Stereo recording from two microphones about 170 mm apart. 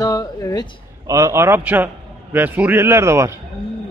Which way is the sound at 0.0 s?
20° left (ahead or behind).